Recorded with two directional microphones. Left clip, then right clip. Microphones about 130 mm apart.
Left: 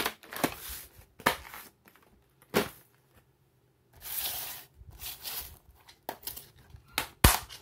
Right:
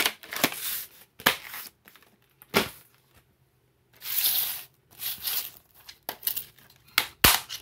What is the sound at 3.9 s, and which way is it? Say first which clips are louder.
Sanding: right 8 dB; 90° left.